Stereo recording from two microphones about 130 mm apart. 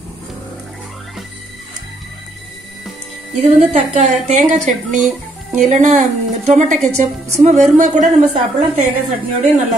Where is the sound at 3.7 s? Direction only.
60° right (ahead or behind).